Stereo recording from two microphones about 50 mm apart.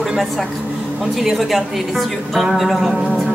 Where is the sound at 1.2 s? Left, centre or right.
Centre.